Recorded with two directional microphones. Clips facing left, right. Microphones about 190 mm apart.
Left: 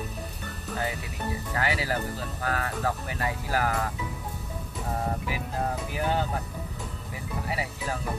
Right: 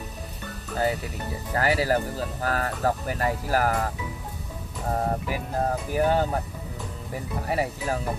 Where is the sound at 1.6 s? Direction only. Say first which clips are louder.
Right 7 dB; 40° right (ahead or behind).